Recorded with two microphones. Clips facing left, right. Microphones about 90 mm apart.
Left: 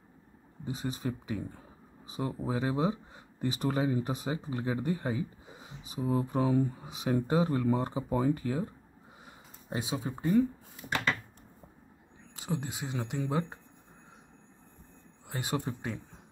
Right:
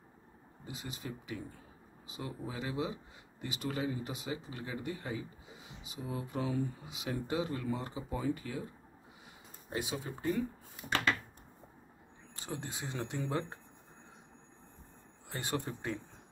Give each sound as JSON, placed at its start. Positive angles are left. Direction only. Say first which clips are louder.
{"t": 0.7, "sound": "speech", "louder": "left 8 dB", "side_deg": 35}
{"t": 9.7, "sound": "speech", "louder": "left 3 dB", "side_deg": 25}
{"t": 12.4, "sound": "speech", "louder": "left 6 dB", "side_deg": 5}
{"t": 15.2, "sound": "speech", "louder": "left 3 dB", "side_deg": 10}